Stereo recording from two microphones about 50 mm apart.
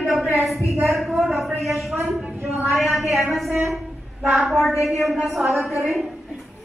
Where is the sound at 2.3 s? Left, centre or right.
Right.